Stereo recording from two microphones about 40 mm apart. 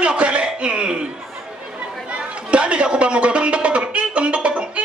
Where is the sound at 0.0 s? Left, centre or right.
Right.